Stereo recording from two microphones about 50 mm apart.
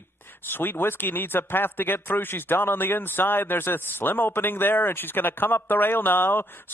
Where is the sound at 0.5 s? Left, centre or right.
Left.